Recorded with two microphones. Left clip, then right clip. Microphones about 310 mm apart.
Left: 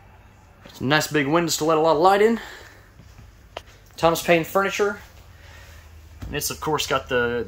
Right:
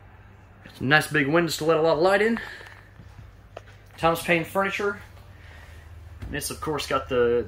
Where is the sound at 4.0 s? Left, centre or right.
Centre.